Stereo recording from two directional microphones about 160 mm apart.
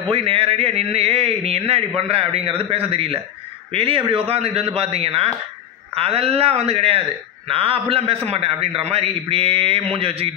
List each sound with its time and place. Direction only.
0.1 s a man's voice: 35° right (ahead or behind)